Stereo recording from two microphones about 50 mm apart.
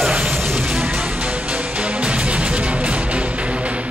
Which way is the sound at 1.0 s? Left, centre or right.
Right.